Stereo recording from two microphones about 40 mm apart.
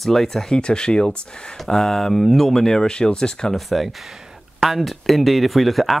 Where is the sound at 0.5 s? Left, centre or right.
Left.